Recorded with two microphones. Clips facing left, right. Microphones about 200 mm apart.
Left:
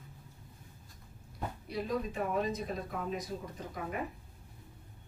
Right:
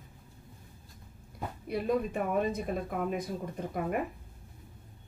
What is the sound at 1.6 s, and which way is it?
Speech, 55° right (ahead or behind).